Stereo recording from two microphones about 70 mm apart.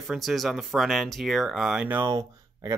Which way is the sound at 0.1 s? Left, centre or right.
Centre.